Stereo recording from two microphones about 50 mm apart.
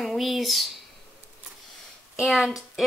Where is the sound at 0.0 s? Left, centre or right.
Centre.